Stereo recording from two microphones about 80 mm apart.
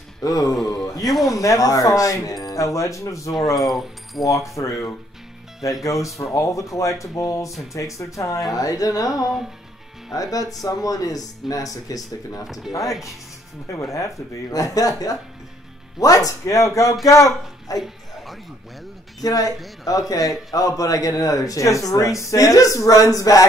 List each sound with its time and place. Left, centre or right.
0.2 s a man's voice: left
3.5 s speech: centre
4.2 s a man's voice: left
13.7 s a man's voice: left
17.7 s music: centre
19.2 s a man's voice: left